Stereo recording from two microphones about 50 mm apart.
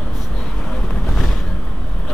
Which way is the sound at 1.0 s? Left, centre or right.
Centre.